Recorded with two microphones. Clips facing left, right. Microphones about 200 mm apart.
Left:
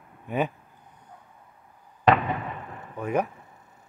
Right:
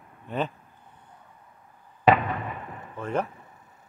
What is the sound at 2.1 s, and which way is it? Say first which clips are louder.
Fireworks: right 1 dB; 5° right (ahead or behind).